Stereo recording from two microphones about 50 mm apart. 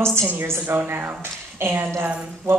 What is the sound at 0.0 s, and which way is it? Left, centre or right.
Speech, right.